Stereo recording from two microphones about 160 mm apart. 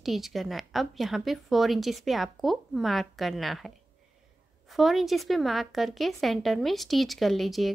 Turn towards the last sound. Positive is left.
turn(degrees=0)  # may be behind; listen again after turning